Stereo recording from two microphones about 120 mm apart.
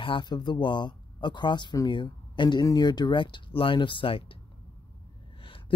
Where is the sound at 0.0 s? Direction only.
40° left (ahead or behind).